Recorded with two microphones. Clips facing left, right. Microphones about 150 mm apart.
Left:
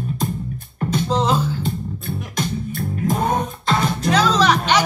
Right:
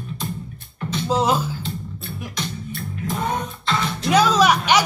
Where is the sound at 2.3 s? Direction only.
45° left (ahead or behind).